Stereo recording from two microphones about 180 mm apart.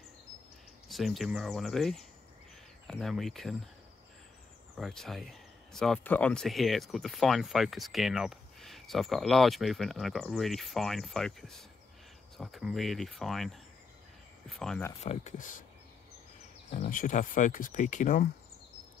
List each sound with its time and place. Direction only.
0.8 s speech: centre (ahead or behind)
4.7 s speech: centre (ahead or behind)
15.0 s speech: 40° left (ahead or behind)
16.7 s speech: 45° left (ahead or behind)